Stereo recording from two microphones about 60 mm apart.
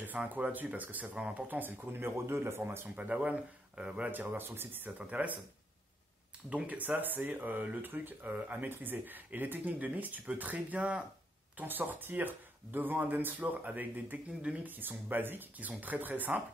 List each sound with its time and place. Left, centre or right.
0.0 s speech: right
3.3 s speech: centre
4.1 s speech: right
6.5 s speech: right
11.5 s speech: right